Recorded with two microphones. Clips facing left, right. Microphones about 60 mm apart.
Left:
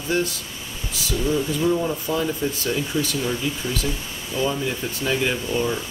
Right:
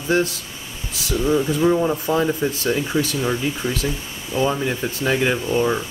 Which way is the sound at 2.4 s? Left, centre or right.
Right.